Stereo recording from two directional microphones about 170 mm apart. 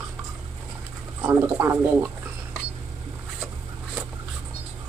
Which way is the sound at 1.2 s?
15° right (ahead or behind).